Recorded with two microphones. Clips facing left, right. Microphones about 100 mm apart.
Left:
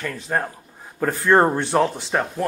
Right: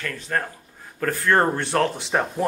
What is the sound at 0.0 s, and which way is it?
Speech, 15° left (ahead or behind).